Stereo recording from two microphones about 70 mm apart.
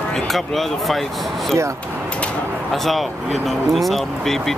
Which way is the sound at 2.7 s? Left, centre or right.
Centre.